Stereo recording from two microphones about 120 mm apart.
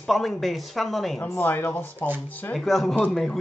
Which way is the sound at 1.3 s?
15° left (ahead or behind).